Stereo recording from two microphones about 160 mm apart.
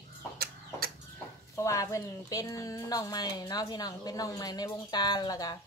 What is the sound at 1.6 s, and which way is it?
Speech, 20° left (ahead or behind).